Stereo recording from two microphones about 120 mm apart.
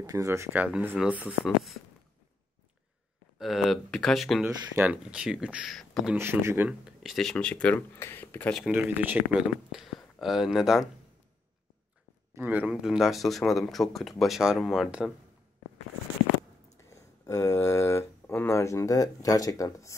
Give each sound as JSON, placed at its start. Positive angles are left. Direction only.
{"t": 0.0, "sound": "speech", "side_deg": -25}
{"t": 3.3, "sound": "speech", "side_deg": 0}
{"t": 4.7, "sound": "speech", "side_deg": -10}
{"t": 5.8, "sound": "speech", "side_deg": 0}
{"t": 6.1, "sound": "speech", "side_deg": -20}
{"t": 6.8, "sound": "speech", "side_deg": -5}
{"t": 8.7, "sound": "speech", "side_deg": -15}
{"t": 12.4, "sound": "speech", "side_deg": -15}
{"t": 16.7, "sound": "speech", "side_deg": 25}